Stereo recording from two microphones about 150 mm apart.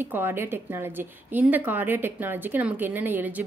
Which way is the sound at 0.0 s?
15° right (ahead or behind).